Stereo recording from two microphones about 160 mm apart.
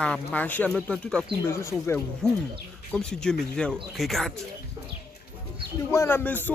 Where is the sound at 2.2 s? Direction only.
5° left (ahead or behind).